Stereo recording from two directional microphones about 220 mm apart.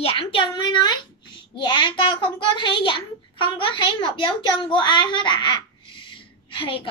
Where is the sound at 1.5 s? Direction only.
20° left (ahead or behind).